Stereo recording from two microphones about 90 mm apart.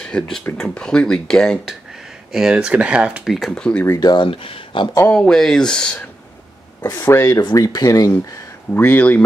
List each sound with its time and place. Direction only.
0.0 s speech: 10° left (ahead or behind)
2.3 s speech: 10° right (ahead or behind)
3.3 s speech: 5° left (ahead or behind)
4.0 s speech: 55° left (ahead or behind)
4.3 s speech: 90° left
5.1 s speech: 5° left (ahead or behind)
7.1 s speech: 35° left (ahead or behind)
8.7 s speech: 20° left (ahead or behind)